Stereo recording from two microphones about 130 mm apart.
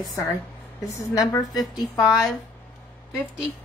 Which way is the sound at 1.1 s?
30° left (ahead or behind).